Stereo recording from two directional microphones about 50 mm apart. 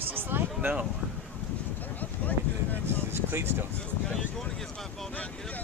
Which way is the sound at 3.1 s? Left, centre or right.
Right.